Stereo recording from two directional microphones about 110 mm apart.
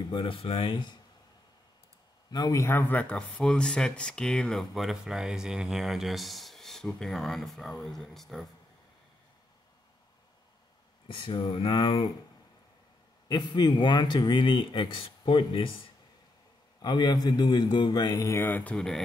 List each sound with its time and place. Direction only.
0.0 s speech: 50° left (ahead or behind)
2.3 s speech: 35° left (ahead or behind); by 8.5 s centre (ahead or behind)
11.1 s speech: 50° left (ahead or behind)
13.3 s speech: 40° left (ahead or behind)
16.8 s a man's voice: 40° left (ahead or behind); by 19.0 s 5° left (ahead or behind)